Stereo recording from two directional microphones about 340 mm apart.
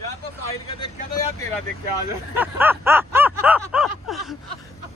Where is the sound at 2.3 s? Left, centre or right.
Centre.